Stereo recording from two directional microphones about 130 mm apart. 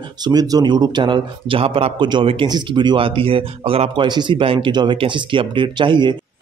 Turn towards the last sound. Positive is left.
turn(degrees=-35)  # may be behind; listen again after turning